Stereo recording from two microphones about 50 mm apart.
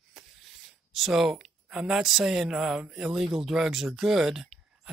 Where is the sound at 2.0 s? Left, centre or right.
Centre.